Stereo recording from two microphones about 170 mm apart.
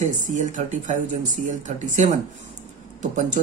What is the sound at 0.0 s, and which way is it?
Speech, 45° right (ahead or behind).